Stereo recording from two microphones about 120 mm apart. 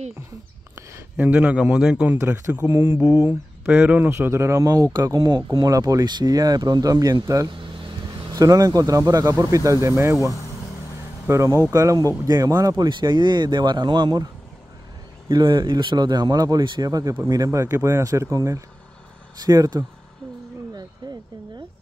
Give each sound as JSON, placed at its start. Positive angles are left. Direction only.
{"t": 1.1, "sound": "a man's voice", "side_deg": -10}
{"t": 2.1, "sound": "speech", "side_deg": -25}
{"t": 11.2, "sound": "speech", "side_deg": -25}